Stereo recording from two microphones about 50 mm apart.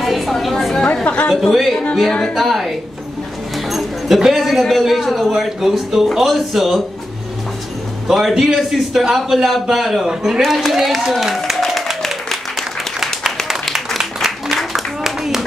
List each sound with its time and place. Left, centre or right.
0.0 s a woman's voice: centre
1.0 s speech: left
1.3 s a man's voice: centre
2.0 s a woman's voice: centre
2.3 s a man's voice: centre
3.5 s a sound: centre
5.3 s a man's voice: centre
8.1 s a man's voice: centre
10.4 s applause: centre
13.9 s applause: centre
14.7 s a sound: centre